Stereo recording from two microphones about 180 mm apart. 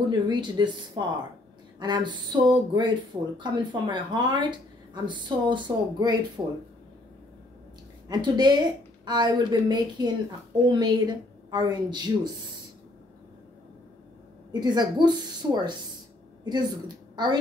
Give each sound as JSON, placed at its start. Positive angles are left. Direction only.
{"t": 0.1, "sound": "speech", "side_deg": -25}
{"t": 8.1, "sound": "speech", "side_deg": -25}
{"t": 14.5, "sound": "a woman's voice", "side_deg": -25}